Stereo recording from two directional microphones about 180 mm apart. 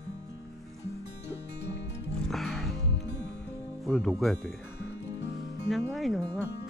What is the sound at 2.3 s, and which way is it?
Music, centre (ahead or behind).